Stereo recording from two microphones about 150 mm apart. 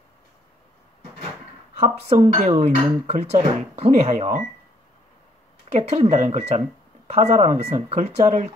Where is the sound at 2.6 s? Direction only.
40° right (ahead or behind).